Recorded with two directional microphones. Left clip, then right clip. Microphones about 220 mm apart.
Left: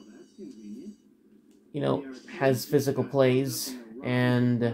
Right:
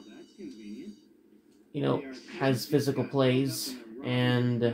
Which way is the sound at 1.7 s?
40° left (ahead or behind).